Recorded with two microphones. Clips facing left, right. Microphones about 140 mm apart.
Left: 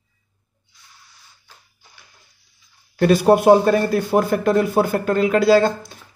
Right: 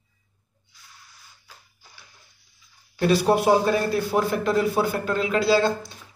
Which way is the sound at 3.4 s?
45° left (ahead or behind).